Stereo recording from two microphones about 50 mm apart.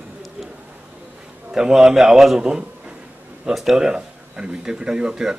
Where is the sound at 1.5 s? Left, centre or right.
Centre.